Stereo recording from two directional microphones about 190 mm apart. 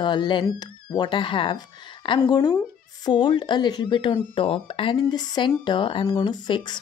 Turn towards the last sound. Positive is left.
turn(degrees=25)  # may be behind; listen again after turning